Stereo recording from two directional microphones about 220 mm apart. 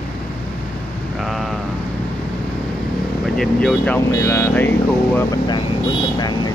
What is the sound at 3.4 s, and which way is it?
Speech, centre (ahead or behind).